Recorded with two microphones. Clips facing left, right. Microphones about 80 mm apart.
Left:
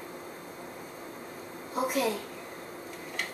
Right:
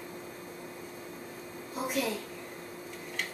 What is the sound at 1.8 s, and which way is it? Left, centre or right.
Speech, centre.